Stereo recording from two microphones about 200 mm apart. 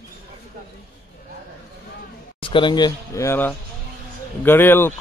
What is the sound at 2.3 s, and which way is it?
Speech, 25° left (ahead or behind).